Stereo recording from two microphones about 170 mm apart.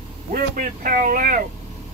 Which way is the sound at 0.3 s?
55° right (ahead or behind).